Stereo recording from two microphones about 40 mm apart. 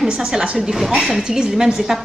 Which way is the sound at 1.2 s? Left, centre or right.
Right.